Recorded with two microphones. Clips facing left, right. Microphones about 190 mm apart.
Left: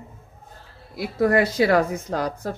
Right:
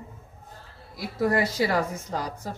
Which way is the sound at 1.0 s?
60° left (ahead or behind).